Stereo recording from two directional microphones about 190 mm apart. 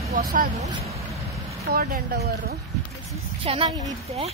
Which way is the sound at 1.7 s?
50° right (ahead or behind).